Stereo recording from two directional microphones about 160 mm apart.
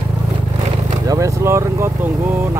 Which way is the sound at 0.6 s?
25° right (ahead or behind).